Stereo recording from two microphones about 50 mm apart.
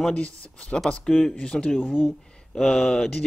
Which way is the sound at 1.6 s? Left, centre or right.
Centre.